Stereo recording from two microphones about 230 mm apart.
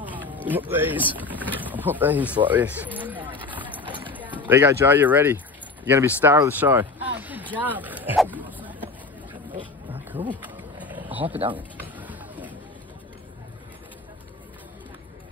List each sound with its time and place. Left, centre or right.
0.1 s speech: centre
9.8 s bee: right
10.4 s wild animals: centre
11.2 s speech: right
11.8 s a sound: centre